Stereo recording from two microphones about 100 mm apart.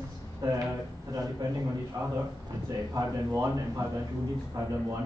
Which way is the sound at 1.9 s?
35° right (ahead or behind).